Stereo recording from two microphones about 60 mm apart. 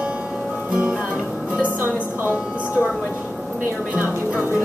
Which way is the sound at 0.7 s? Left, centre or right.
Centre.